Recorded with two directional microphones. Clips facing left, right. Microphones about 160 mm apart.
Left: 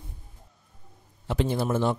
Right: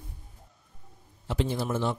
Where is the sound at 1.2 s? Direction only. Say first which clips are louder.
Left 3 dB; 55° left (ahead or behind).